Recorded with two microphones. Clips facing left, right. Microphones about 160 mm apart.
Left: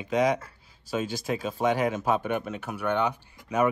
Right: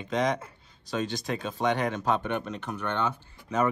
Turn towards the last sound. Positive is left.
turn(degrees=10)  # may be behind; listen again after turning